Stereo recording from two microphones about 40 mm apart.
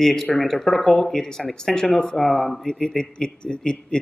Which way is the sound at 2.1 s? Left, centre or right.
Centre.